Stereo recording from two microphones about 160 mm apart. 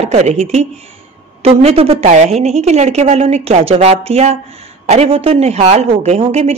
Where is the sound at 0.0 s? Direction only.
45° right (ahead or behind).